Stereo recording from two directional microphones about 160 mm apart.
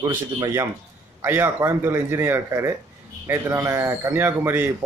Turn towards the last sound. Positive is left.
turn(degrees=-15)  # may be behind; listen again after turning